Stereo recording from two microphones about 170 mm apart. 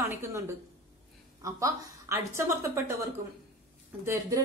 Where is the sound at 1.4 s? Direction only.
20° right (ahead or behind).